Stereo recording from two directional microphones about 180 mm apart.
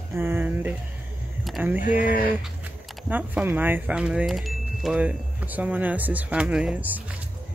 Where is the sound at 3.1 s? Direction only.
10° right (ahead or behind).